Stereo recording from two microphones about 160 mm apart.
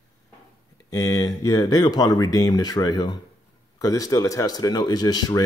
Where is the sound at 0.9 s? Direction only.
20° left (ahead or behind).